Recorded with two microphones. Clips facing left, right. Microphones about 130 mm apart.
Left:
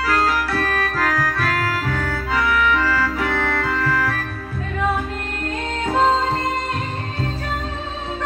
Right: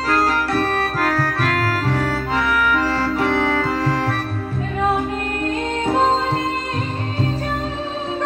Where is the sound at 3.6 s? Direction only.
35° right (ahead or behind).